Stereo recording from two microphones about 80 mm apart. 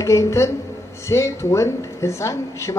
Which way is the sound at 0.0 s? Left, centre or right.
Left.